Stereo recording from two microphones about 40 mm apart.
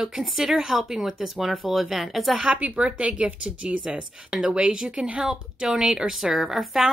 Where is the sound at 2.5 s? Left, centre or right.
Right.